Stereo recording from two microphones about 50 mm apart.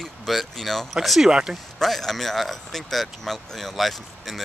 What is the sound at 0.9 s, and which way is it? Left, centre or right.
Speech, centre.